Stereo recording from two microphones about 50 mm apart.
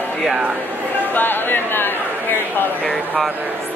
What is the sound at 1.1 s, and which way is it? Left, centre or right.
Speech, left.